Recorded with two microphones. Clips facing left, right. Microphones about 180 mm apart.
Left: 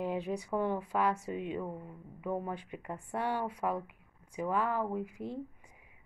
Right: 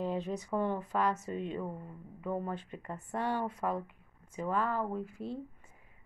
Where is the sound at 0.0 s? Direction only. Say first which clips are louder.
Even; 10° left (ahead or behind).